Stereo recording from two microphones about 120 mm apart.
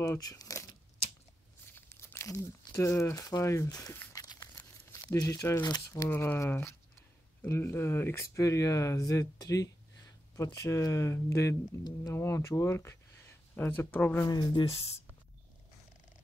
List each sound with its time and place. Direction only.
0.0 s speech: 30° left (ahead or behind)
1.7 s speech: 20° left (ahead or behind)
4.1 s crumpling: 30° left (ahead or behind)
4.6 s speech: 25° left (ahead or behind)
14.2 s speech: 35° left (ahead or behind)